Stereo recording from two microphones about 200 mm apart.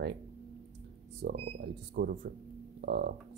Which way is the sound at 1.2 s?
50° right (ahead or behind).